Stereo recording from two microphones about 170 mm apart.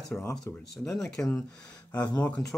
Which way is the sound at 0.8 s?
Centre (ahead or behind).